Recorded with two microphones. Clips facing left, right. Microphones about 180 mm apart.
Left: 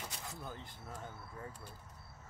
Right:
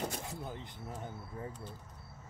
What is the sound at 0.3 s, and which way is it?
Speech, 20° right (ahead or behind).